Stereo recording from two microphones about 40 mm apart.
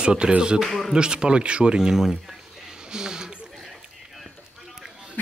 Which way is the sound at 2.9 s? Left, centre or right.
Centre.